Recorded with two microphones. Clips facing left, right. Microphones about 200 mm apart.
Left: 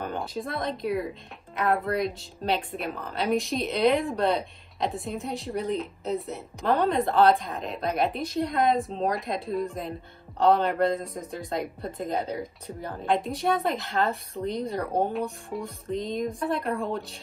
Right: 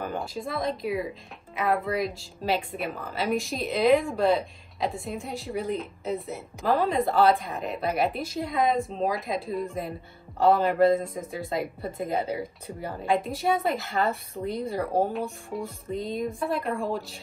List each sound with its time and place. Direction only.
0.0 s speech: centre (ahead or behind)